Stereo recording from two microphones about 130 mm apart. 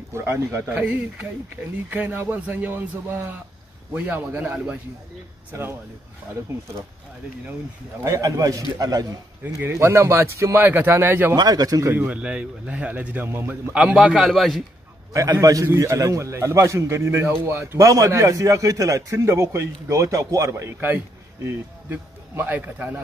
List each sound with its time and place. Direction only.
0.1 s a man's voice: 20° right (ahead or behind)
8.0 s a man's voice: 25° right (ahead or behind)
11.3 s a man's voice: 30° right (ahead or behind)
11.9 s speech: 10° right (ahead or behind)
15.4 s a man's voice: 20° right (ahead or behind)